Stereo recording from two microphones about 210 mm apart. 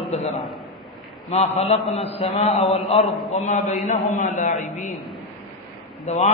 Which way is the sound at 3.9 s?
35° left (ahead or behind).